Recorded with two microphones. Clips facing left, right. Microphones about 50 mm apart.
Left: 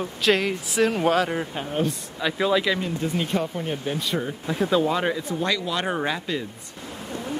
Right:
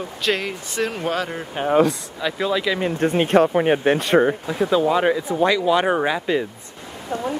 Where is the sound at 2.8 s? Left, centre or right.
Right.